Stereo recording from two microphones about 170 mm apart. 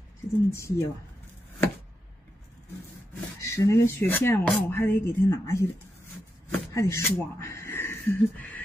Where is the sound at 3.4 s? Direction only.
15° left (ahead or behind).